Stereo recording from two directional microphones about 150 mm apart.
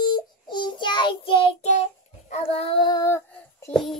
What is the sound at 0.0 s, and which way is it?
Child singing, 30° left (ahead or behind).